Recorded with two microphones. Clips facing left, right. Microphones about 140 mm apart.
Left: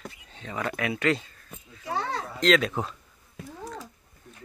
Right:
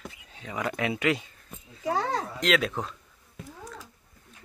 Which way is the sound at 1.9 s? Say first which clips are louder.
Right 2 dB; 40° right (ahead or behind).